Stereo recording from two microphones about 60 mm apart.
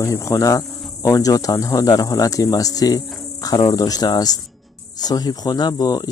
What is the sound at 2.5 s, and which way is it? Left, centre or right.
Insect, left.